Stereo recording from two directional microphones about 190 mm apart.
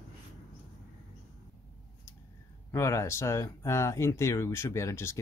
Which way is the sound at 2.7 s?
15° left (ahead or behind).